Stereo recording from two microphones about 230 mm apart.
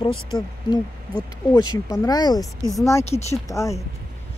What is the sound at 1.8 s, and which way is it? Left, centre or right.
Speech, centre.